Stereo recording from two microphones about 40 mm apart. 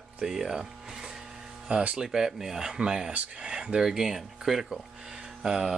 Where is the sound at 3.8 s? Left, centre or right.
Centre.